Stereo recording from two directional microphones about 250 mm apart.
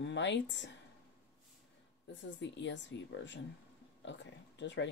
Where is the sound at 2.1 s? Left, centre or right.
Left.